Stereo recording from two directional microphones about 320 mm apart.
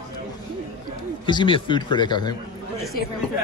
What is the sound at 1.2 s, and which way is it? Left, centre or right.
Speech, centre.